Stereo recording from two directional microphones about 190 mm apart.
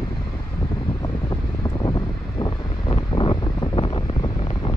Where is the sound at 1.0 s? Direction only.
20° left (ahead or behind).